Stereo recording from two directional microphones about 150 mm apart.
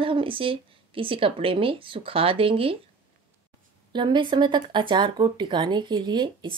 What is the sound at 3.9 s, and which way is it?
Speech, 30° right (ahead or behind).